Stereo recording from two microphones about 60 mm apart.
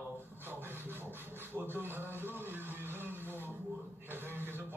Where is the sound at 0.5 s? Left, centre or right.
Right.